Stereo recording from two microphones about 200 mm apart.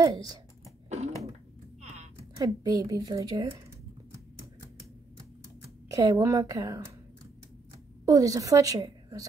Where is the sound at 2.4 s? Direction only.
20° right (ahead or behind).